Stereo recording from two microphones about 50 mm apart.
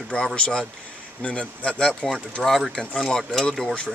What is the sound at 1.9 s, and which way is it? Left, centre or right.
Speech, centre.